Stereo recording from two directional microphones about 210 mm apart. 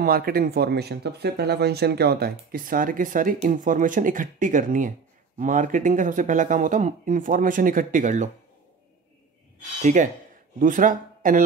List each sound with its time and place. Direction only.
0.0 s speech: 45° right (ahead or behind)
10.6 s speech: 40° right (ahead or behind)